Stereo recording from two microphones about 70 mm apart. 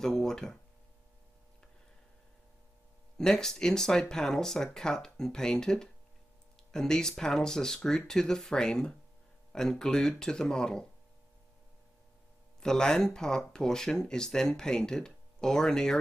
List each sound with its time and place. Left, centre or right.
0.0 s speech: centre
3.2 s speech: centre
12.5 s speech: centre